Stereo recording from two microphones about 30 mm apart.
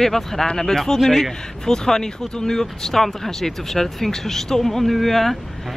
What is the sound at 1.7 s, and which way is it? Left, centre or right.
Speech, centre.